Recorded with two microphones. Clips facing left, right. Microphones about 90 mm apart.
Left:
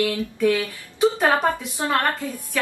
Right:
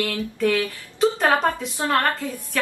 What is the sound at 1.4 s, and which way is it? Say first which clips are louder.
Speech: even; 15° left (ahead or behind).